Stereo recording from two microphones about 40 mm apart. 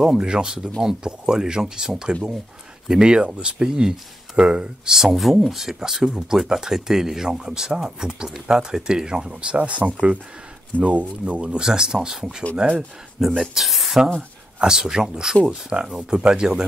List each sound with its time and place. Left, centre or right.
0.2 s speech: centre
5.0 s speech: centre
9.3 s speech: right
11.6 s speech: centre
13.4 s speech: centre
14.6 s speech: centre